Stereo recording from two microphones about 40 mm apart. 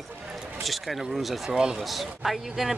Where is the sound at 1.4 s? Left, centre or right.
Centre.